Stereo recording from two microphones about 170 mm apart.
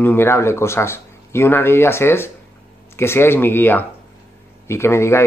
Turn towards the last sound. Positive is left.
turn(degrees=15)  # may be behind; listen again after turning